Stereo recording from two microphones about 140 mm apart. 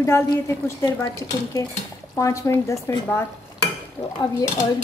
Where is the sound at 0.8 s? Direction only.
30° left (ahead or behind).